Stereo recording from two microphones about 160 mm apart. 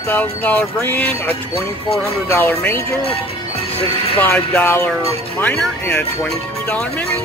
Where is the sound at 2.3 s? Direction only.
10° left (ahead or behind).